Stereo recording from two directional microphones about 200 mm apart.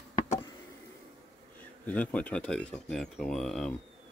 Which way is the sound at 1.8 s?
5° left (ahead or behind).